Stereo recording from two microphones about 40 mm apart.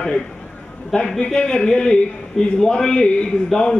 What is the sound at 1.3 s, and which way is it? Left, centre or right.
A man's voice, left.